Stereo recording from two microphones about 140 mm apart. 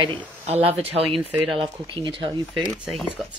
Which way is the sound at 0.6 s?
45° right (ahead or behind).